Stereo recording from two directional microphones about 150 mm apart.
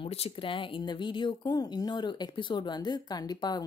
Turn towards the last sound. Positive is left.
turn(degrees=30)  # may be behind; listen again after turning